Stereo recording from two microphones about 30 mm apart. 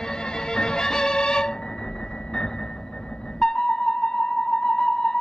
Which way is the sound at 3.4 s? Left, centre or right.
Left.